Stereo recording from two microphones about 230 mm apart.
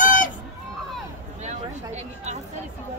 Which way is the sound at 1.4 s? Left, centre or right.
Right.